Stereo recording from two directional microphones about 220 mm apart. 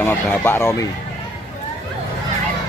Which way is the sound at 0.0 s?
10° left (ahead or behind).